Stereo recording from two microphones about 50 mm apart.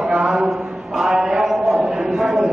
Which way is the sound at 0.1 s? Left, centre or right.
Centre.